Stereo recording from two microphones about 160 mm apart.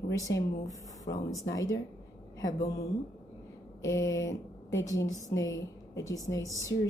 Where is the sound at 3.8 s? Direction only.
20° left (ahead or behind).